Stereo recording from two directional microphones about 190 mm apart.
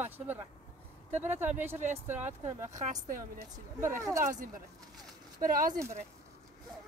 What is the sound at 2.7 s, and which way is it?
Speech, 40° right (ahead or behind).